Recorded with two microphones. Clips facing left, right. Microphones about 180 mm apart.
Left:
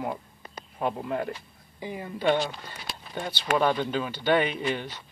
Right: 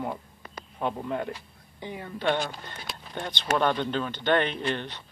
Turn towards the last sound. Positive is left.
turn(degrees=10)  # may be behind; listen again after turning